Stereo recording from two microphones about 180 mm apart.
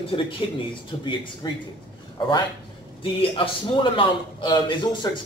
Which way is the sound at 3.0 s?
30° left (ahead or behind).